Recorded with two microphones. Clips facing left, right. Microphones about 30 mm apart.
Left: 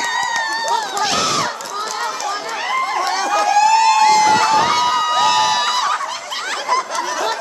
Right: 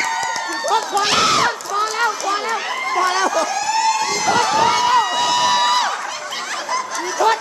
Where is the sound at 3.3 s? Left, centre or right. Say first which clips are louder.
Left 6 dB; left.